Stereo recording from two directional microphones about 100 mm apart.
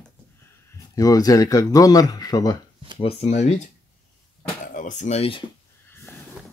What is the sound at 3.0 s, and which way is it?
Speech, 85° left.